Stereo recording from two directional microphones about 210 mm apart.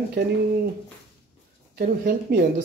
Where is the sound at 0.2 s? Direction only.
50° right (ahead or behind).